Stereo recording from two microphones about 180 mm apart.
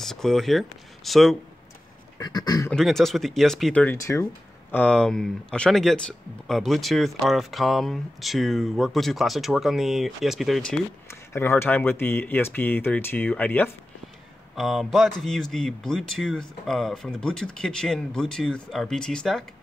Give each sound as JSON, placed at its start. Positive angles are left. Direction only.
{"t": 0.0, "sound": "speech", "side_deg": 0}
{"t": 2.1, "sound": "speech", "side_deg": 20}
{"t": 2.7, "sound": "speech", "side_deg": 0}